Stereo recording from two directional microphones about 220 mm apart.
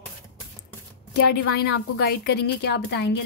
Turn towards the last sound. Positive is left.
turn(degrees=50)  # may be behind; listen again after turning